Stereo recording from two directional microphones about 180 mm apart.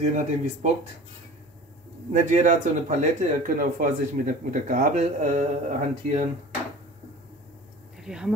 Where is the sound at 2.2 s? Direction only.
40° right (ahead or behind).